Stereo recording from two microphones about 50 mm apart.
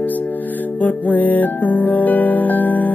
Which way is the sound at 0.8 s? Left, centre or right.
Left.